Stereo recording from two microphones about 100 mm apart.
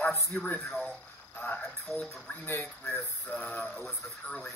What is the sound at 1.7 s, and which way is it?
Speech, 5° left (ahead or behind).